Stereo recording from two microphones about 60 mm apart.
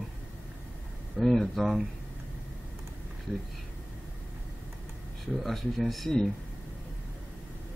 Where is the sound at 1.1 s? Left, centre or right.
Centre.